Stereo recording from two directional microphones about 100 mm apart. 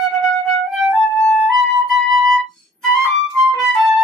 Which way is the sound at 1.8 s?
Centre (ahead or behind).